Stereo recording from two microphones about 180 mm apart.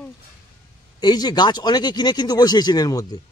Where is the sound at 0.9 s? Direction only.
25° left (ahead or behind).